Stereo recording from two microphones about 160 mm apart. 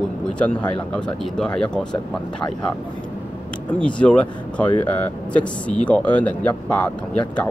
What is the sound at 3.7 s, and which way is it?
Speech, 5° left (ahead or behind).